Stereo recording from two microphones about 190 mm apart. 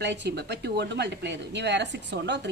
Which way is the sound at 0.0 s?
65° right (ahead or behind).